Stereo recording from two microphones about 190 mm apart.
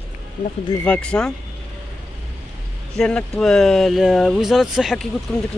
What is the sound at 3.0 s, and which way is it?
Speech, 5° left (ahead or behind).